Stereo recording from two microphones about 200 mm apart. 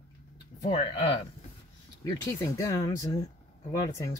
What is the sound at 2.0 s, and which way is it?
Speech, 15° left (ahead or behind).